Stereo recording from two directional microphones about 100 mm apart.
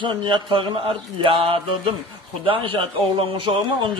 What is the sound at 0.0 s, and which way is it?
A man's voice, 55° right (ahead or behind).